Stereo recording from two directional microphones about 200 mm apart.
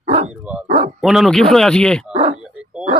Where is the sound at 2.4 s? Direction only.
5° right (ahead or behind).